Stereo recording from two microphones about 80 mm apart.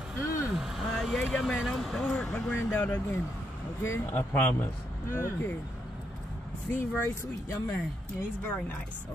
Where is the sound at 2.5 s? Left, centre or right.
Left.